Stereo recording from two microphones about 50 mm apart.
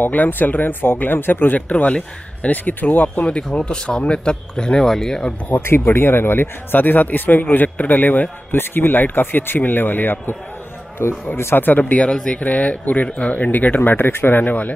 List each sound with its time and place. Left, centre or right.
0.0 s a man's voice: left
3.5 s speech: centre
5.5 s a man's voice: left
11.0 s speech: left
12.1 s speech: centre
12.4 s speech: left
13.9 s speech: left